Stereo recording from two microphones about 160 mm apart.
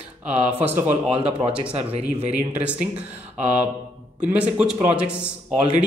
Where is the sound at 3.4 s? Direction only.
10° right (ahead or behind).